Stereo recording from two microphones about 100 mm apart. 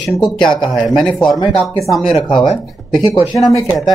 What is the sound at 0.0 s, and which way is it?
Speech, 5° left (ahead or behind).